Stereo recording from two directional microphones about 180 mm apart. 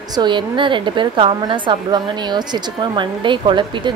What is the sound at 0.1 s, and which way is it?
A woman's voice, 25° right (ahead or behind).